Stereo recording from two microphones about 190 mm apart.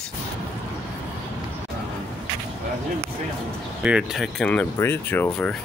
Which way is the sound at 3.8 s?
Centre (ahead or behind).